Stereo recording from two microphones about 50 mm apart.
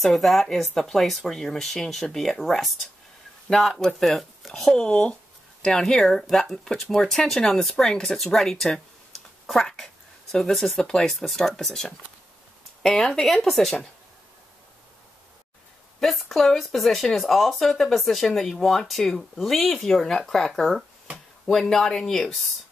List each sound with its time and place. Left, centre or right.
0.0 s speech: centre
4.8 s speech: centre
16.0 s speech: centre